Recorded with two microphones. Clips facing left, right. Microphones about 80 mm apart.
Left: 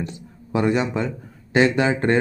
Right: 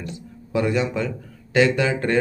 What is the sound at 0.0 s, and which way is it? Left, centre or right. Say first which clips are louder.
Speech: left 3 dB; left.